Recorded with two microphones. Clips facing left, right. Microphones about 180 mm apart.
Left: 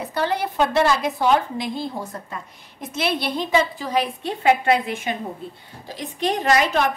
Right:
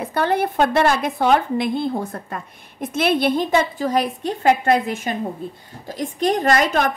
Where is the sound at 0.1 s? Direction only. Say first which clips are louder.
Right 4 dB; 55° right (ahead or behind).